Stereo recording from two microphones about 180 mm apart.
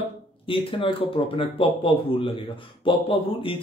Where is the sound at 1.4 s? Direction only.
30° left (ahead or behind).